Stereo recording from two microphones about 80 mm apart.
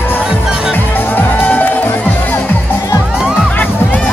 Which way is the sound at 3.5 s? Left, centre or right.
Left.